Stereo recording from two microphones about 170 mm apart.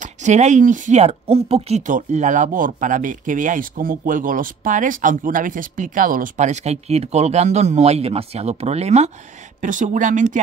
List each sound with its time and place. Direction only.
0.0 s speech: 45° right (ahead or behind)